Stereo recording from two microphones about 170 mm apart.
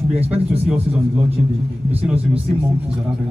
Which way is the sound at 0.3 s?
10° right (ahead or behind).